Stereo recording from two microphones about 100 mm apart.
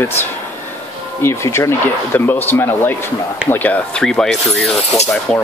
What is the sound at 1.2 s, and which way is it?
Speech, 25° left (ahead or behind).